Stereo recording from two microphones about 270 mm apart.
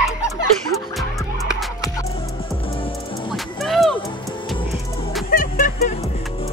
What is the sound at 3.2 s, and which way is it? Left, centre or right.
Music, centre.